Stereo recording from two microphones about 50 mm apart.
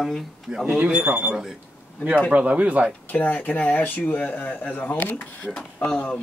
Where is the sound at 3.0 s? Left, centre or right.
Left.